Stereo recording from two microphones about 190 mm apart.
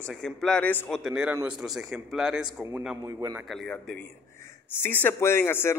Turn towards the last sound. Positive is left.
turn(degrees=10)  # may be behind; listen again after turning